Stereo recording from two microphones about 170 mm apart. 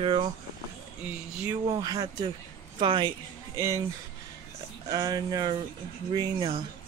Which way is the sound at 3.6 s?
15° right (ahead or behind).